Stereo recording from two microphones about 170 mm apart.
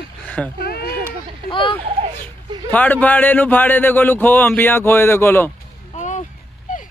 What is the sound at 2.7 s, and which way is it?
Speech, 10° left (ahead or behind).